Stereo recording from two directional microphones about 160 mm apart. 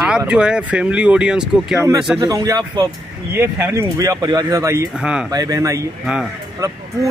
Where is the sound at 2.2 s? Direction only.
20° right (ahead or behind).